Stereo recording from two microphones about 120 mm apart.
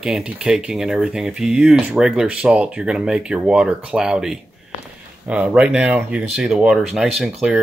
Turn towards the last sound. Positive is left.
turn(degrees=-5)  # may be behind; listen again after turning